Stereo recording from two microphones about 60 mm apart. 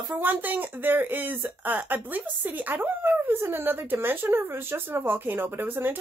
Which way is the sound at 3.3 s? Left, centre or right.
Right.